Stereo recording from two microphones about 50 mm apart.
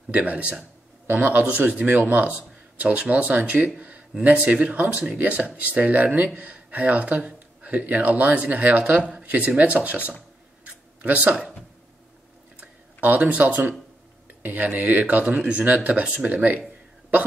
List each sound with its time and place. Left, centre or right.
0.1 s speech: right
13.0 s speech: right